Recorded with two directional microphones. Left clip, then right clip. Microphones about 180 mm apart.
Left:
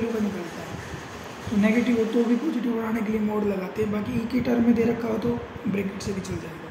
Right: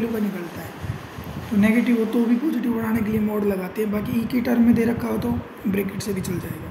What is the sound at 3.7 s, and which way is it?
A woman's voice, 40° right (ahead or behind).